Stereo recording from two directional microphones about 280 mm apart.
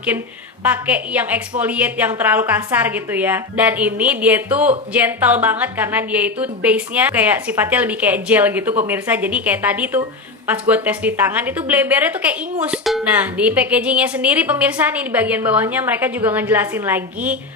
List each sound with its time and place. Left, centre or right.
0.7 s a woman's voice: centre